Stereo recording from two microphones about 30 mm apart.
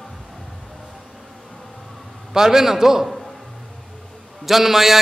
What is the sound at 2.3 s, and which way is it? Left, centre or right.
Speech, centre.